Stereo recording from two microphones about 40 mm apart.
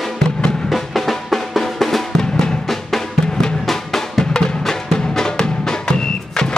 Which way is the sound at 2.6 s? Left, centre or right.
Centre.